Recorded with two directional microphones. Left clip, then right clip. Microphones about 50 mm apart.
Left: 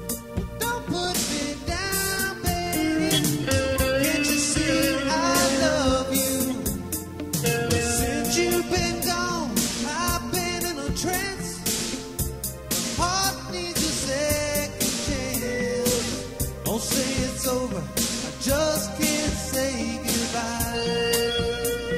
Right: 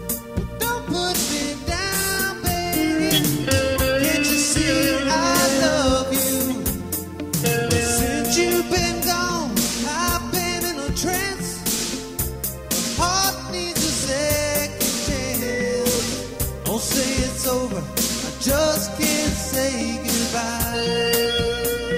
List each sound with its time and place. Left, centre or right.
0.7 s music: left
12.7 s music: left
20.7 s music: left